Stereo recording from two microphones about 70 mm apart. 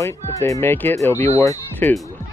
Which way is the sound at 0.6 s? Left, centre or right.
Left.